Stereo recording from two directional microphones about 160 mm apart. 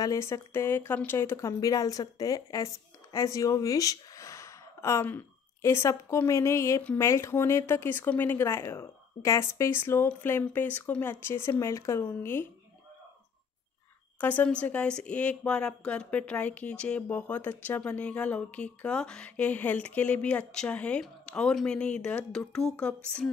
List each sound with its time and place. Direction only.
0.0 s a woman's voice: 20° left (ahead or behind)
14.2 s a woman's voice: 10° left (ahead or behind)
22.7 s a sound: 5° left (ahead or behind)